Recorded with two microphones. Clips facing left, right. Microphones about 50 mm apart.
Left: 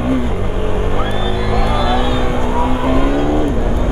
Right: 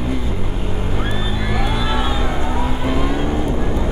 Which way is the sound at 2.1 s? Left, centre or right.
Centre.